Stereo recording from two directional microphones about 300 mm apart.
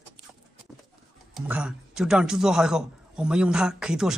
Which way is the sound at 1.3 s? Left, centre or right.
Centre.